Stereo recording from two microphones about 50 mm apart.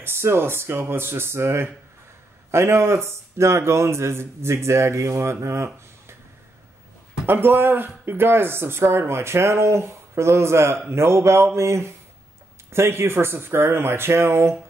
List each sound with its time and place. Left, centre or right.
0.0 s speech: right
7.2 s speech: right